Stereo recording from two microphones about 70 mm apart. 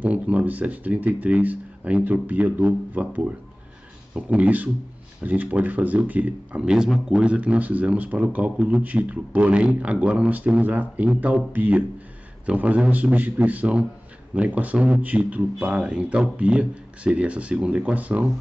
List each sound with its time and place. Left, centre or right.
0.0 s a man's voice: right
7.2 s a man's voice: centre